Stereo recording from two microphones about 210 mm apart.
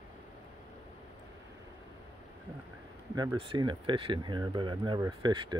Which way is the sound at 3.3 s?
25° right (ahead or behind).